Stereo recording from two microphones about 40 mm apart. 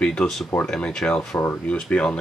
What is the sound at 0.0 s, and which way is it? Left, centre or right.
Speech, left.